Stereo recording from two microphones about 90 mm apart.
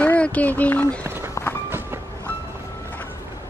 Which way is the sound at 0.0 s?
15° left (ahead or behind).